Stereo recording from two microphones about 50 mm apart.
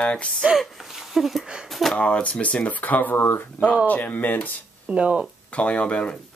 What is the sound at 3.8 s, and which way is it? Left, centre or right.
Speech, left.